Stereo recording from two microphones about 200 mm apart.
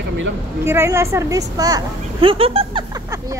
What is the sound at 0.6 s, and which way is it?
A woman's voice, 15° right (ahead or behind).